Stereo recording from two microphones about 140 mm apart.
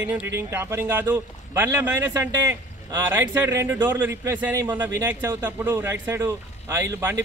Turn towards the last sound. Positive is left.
turn(degrees=-20)  # may be behind; listen again after turning